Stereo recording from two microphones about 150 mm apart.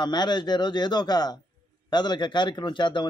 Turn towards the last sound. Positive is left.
turn(degrees=30)  # may be behind; listen again after turning